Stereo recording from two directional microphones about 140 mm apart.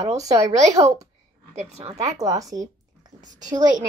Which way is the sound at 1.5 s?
50° right (ahead or behind).